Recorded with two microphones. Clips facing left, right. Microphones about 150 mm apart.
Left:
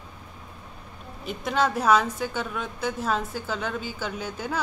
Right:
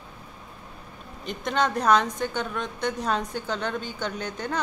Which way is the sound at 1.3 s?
5° left (ahead or behind).